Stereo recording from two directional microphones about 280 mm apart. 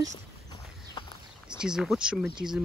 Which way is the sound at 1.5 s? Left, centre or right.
Centre.